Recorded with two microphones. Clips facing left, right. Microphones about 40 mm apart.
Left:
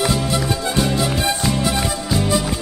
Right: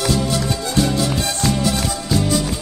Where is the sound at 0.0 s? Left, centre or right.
Centre.